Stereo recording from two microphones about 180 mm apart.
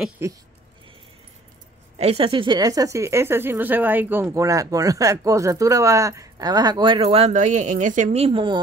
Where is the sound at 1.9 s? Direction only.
35° right (ahead or behind).